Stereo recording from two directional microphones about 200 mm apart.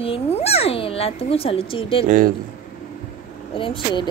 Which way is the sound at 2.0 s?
40° right (ahead or behind).